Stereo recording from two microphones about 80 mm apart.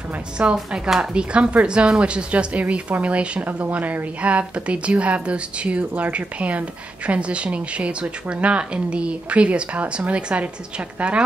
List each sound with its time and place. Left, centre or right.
0.4 s speech: centre